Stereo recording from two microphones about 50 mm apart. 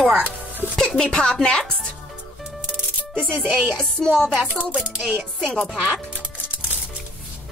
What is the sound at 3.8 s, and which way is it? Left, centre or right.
Speech, centre.